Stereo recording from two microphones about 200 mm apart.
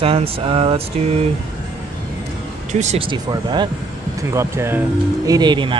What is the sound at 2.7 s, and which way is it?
Speech, 35° right (ahead or behind).